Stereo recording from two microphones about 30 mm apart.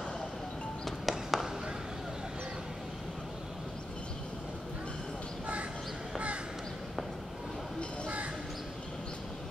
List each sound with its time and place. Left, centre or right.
0.8 s music: centre
6.1 s crow: right